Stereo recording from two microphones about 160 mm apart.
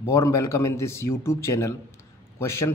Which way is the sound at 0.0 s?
20° left (ahead or behind).